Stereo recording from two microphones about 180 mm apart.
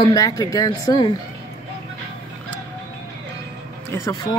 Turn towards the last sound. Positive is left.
turn(degrees=15)  # may be behind; listen again after turning